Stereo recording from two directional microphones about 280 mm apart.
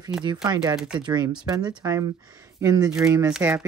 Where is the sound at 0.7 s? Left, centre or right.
Centre.